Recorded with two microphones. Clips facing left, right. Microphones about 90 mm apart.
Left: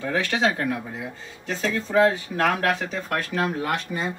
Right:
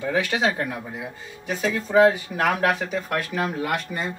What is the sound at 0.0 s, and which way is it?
Speech, 10° right (ahead or behind).